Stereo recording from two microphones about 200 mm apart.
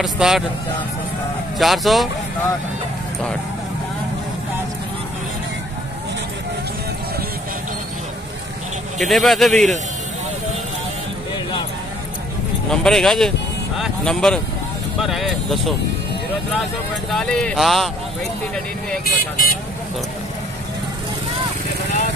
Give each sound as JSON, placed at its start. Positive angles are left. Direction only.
{"t": 0.0, "sound": "speech", "side_deg": 0}
{"t": 1.6, "sound": "speech", "side_deg": 0}
{"t": 8.9, "sound": "speech", "side_deg": 0}
{"t": 12.6, "sound": "speech", "side_deg": 5}
{"t": 17.1, "sound": "speech", "side_deg": 5}
{"t": 19.0, "sound": "speech", "side_deg": 45}